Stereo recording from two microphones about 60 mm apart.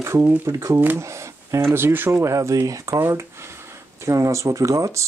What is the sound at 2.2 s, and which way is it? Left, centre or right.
Speech, right.